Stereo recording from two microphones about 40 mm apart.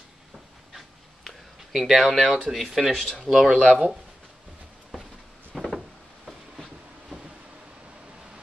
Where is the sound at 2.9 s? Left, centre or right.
Centre.